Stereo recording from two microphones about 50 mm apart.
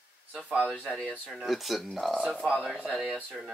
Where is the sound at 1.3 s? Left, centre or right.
Centre.